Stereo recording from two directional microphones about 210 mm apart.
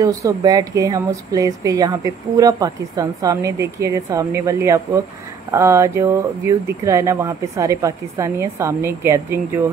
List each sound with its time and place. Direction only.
0.0 s speech: 15° right (ahead or behind)